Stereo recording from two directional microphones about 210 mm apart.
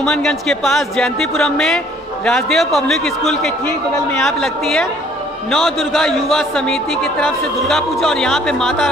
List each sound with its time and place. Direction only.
0.0 s a man's voice: centre (ahead or behind)